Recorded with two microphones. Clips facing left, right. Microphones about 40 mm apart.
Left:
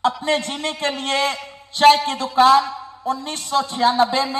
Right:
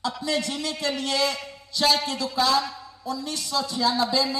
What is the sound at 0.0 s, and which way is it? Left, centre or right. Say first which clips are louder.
A woman's voice: left 7 dB; left.